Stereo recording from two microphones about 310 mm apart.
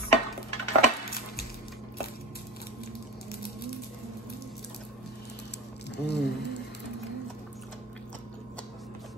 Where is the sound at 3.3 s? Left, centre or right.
Left.